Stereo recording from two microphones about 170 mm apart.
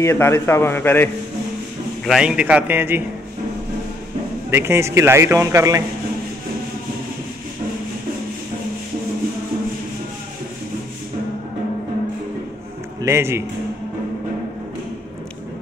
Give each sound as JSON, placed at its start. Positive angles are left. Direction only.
{"t": 0.0, "sound": "a man's voice", "side_deg": 15}
{"t": 2.0, "sound": "a man's voice", "side_deg": -5}
{"t": 4.5, "sound": "a man's voice", "side_deg": -15}
{"t": 13.0, "sound": "a man's voice", "side_deg": -15}